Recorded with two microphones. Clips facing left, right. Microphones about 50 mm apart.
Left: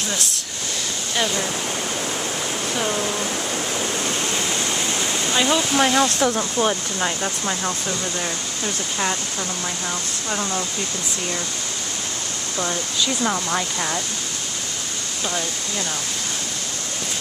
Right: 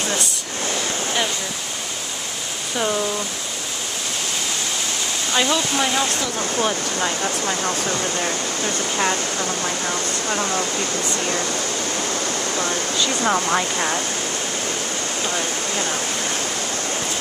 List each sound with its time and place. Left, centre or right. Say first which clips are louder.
5.5 s speech: left 2 dB; centre
13.2 s speech: right 6 dB; centre